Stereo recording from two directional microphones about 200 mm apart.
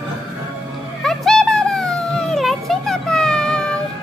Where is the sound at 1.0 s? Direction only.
Centre (ahead or behind).